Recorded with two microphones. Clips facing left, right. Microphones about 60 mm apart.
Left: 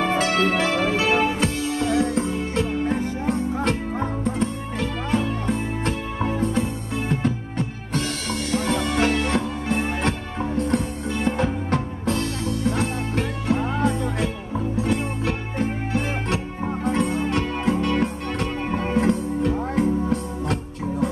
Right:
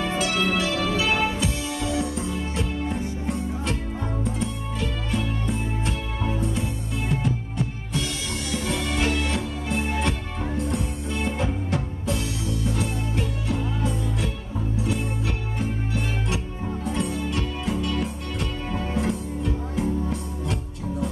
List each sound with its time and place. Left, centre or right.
0.0 s music: left
8.5 s music: left
15.6 s music: left